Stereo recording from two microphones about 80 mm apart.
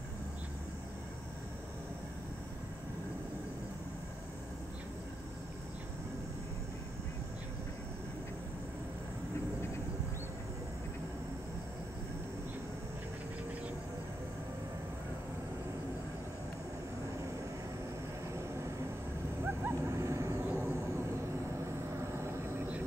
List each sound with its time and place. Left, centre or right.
18.3 s vehicle: right
19.4 s dog: right
21.9 s vehicle: right